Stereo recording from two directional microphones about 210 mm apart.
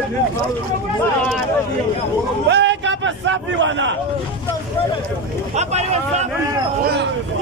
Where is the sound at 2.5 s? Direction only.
60° right (ahead or behind).